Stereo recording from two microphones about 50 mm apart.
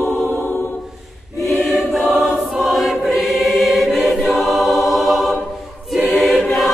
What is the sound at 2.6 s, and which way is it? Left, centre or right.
Choir, centre.